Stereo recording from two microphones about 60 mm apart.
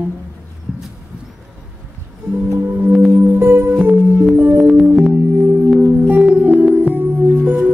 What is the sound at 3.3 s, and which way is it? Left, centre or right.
Music, right.